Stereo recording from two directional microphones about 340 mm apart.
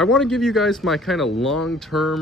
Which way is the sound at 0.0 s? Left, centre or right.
Centre.